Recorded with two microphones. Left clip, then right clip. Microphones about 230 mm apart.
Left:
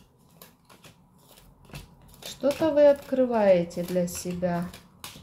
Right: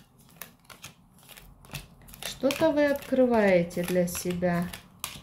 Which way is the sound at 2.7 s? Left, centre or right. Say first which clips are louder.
Left 5 dB; right.